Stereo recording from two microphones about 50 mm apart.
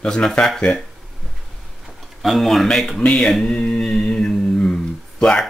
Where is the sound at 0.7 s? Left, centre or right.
Left.